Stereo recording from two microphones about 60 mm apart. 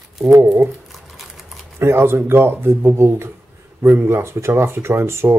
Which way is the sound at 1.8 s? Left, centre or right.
Right.